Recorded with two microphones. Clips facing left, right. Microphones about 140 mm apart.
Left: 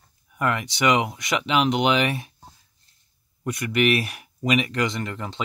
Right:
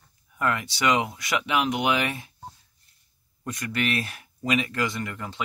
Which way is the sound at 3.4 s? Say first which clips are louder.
Left 6 dB; 15° left (ahead or behind).